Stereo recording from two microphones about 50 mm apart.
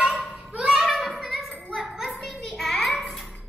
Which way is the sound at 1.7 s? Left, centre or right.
Centre.